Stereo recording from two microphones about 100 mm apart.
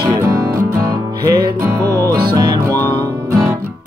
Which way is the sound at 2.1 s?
50° right (ahead or behind).